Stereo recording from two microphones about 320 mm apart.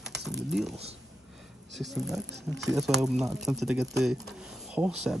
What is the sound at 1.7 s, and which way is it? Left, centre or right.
Speech, centre.